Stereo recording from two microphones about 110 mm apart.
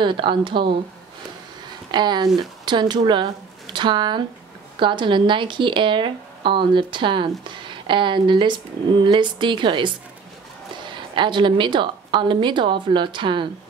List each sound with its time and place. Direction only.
0.0 s speech: 45° right (ahead or behind)
1.9 s speech: 40° right (ahead or behind)
11.1 s speech: 45° right (ahead or behind)